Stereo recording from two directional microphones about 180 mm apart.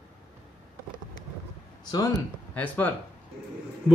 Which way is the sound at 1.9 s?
20° left (ahead or behind).